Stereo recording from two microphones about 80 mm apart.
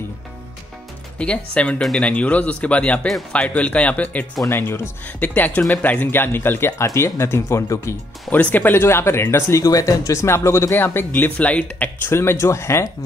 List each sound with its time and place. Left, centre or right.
1.1 s speech: centre
4.4 s speech: left
5.0 s speech: left
8.3 s speech: left
9.6 s speech: left